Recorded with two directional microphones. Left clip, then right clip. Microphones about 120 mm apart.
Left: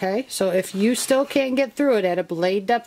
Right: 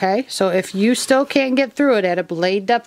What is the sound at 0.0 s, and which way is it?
Speech, 40° right (ahead or behind).